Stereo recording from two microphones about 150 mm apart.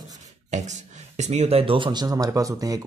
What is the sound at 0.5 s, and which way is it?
Speech, 50° right (ahead or behind).